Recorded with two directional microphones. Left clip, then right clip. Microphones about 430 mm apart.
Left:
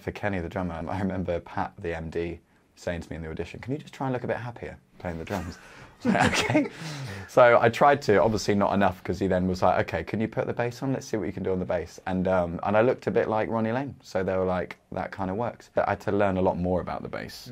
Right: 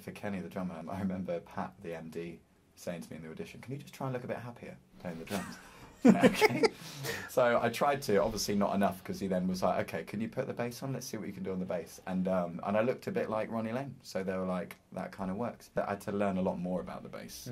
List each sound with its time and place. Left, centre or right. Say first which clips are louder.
0.0 s speech: left 11 dB; left
6.1 s a sound: left 4 dB; left
7.3 s speech: left 11 dB; left